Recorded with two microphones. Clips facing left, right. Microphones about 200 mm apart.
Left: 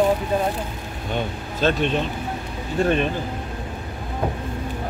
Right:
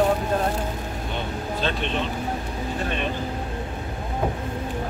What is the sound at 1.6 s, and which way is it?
Speech, 45° left (ahead or behind).